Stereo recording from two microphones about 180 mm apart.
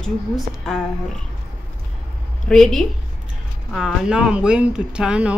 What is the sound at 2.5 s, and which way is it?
Speech, centre (ahead or behind).